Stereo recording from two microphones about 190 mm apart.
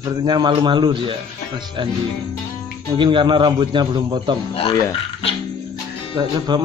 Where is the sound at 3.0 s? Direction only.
25° right (ahead or behind).